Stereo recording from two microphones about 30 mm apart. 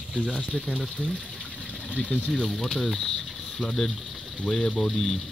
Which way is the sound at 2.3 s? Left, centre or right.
Centre.